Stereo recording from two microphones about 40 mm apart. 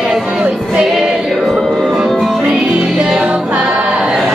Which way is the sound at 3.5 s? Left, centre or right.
Right.